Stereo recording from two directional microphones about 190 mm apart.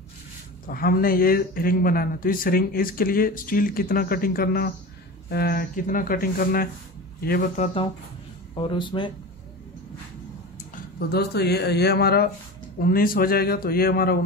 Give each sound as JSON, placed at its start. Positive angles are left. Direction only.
{"t": 0.7, "sound": "speech", "side_deg": 50}
{"t": 10.7, "sound": "speech", "side_deg": 55}